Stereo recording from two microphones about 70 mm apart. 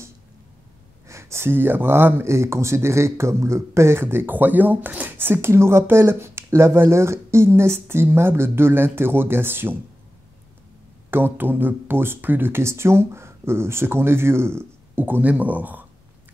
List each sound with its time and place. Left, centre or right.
1.0 s speech: right
11.1 s speech: right